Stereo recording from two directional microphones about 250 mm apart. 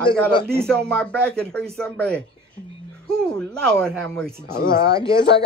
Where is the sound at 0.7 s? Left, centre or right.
Centre.